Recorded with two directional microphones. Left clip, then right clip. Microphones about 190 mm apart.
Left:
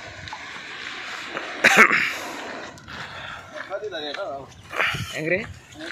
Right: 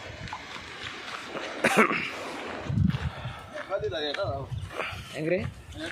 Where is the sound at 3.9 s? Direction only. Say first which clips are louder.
Even; 30° left (ahead or behind).